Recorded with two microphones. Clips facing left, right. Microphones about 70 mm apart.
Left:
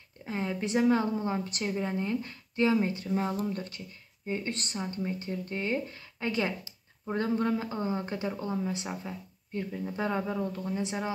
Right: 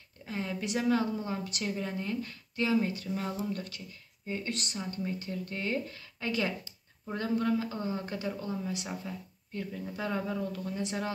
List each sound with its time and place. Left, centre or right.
0.2 s speech: left
4.7 s speech: left